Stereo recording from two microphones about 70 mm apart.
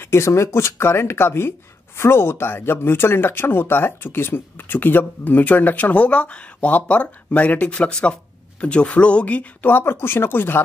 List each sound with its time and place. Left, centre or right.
0.0 s speech: left